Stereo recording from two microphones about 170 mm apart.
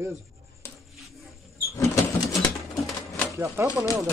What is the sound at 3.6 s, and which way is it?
Speech, 15° right (ahead or behind).